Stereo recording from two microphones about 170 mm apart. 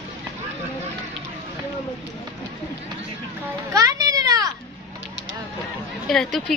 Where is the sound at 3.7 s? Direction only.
20° right (ahead or behind).